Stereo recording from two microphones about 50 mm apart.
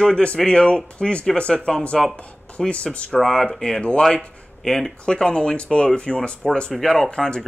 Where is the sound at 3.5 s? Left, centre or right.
Centre.